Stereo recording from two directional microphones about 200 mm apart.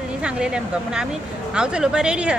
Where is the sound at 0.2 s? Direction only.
5° right (ahead or behind).